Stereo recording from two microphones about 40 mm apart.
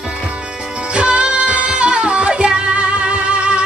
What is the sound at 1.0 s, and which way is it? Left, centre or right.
Music, right.